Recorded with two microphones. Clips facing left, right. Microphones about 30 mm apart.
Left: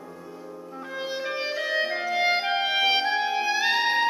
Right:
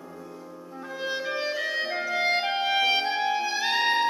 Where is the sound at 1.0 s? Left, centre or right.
Centre.